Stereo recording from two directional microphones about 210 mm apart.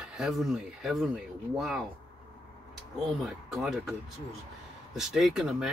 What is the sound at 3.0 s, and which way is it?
Speech, centre (ahead or behind).